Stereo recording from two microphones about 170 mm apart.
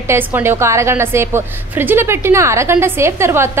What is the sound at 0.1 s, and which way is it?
A woman's voice, 15° right (ahead or behind).